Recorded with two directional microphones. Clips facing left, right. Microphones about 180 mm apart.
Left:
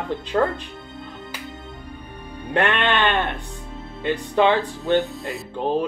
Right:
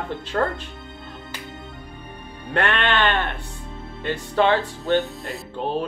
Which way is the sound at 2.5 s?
15° left (ahead or behind).